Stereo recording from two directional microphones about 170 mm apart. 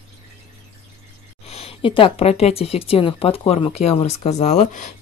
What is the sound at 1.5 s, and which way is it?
A woman's voice, 35° left (ahead or behind).